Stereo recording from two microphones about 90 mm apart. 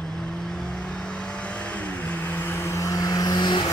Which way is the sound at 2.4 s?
25° left (ahead or behind).